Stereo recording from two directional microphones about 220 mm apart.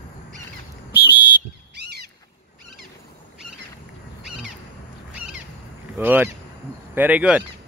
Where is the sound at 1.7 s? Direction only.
50° right (ahead or behind).